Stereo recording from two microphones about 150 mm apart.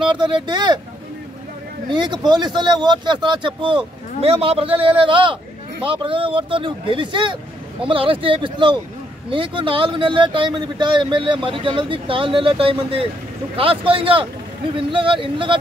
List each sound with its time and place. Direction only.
0.3 s speech: 30° right (ahead or behind)
1.9 s speech: 30° right (ahead or behind)